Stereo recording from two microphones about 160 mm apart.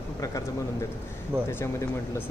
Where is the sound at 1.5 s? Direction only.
15° left (ahead or behind).